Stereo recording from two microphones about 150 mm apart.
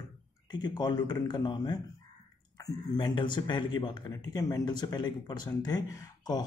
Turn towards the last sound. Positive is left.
turn(degrees=25)  # may be behind; listen again after turning